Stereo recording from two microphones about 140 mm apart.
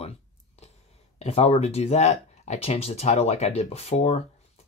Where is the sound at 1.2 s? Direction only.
45° left (ahead or behind).